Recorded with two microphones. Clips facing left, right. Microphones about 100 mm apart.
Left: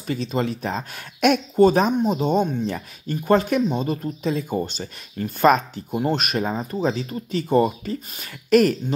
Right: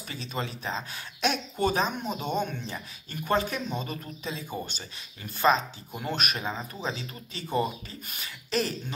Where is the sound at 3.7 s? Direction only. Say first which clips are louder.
Left 10 dB; 35° left (ahead or behind); by 5.8 s 55° left (ahead or behind).